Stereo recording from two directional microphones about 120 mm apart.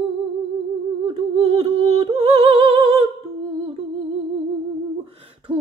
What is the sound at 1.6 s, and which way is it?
Humming, 55° right (ahead or behind).